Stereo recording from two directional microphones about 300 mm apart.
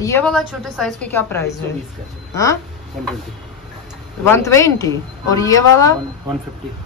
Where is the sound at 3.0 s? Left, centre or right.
Centre.